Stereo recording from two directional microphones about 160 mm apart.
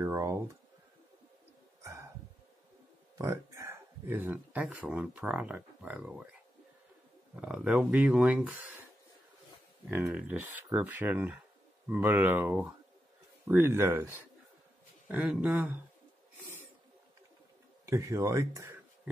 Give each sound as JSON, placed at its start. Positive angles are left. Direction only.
{"t": 0.0, "sound": "speech", "side_deg": -15}
{"t": 1.8, "sound": "bird", "side_deg": -20}
{"t": 3.2, "sound": "speech", "side_deg": -20}
{"t": 7.3, "sound": "speech", "side_deg": -5}
{"t": 10.0, "sound": "speech", "side_deg": -10}
{"t": 17.8, "sound": "speech", "side_deg": -20}